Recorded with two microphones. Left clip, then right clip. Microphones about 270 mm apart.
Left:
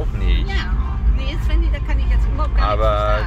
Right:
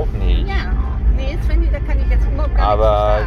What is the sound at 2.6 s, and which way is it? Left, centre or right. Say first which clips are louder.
Speech: right 4 dB; centre.